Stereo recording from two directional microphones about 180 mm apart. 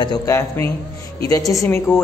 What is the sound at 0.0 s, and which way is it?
A woman's voice, 20° left (ahead or behind).